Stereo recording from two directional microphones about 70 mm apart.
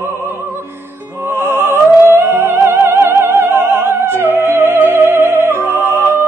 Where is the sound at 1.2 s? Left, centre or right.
Right.